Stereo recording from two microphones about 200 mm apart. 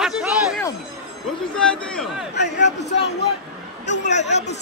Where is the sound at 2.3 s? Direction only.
60° left (ahead or behind).